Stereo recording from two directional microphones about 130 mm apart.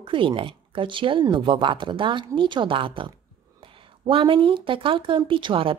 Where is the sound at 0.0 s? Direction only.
40° right (ahead or behind).